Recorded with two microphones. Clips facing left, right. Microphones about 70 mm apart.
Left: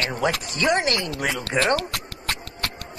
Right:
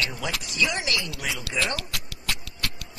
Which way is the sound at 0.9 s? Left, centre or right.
Left.